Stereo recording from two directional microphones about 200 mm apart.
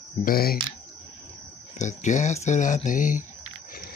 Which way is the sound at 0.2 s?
50° left (ahead or behind).